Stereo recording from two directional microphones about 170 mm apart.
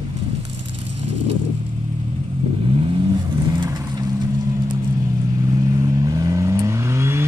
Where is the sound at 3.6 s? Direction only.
20° right (ahead or behind).